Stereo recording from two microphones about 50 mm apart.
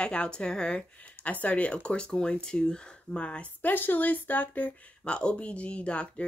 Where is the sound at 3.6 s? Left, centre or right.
Left.